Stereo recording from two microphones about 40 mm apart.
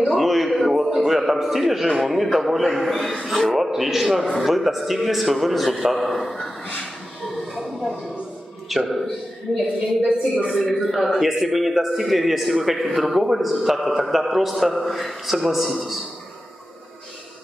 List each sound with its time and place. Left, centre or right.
0.2 s a sound: centre
0.8 s a man's voice: centre
7.5 s a sound: centre
8.6 s a man's voice: centre
10.1 s a woman's voice: right
10.5 s a man's voice: centre